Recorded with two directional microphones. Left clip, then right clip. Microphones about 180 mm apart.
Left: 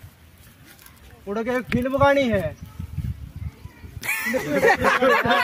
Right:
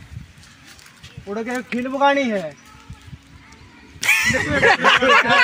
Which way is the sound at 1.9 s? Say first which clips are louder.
Right 1 dB; 20° left (ahead or behind).